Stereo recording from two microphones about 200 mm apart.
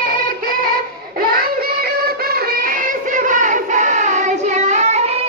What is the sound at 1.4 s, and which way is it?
Music, 50° right (ahead or behind).